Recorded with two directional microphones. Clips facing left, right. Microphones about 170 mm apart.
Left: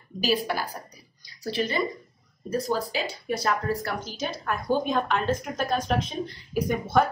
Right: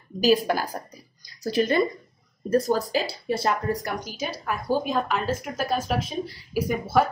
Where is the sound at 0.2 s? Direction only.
45° right (ahead or behind).